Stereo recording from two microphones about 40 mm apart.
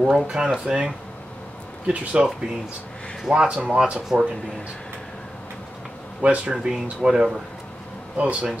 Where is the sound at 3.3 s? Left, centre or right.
Right.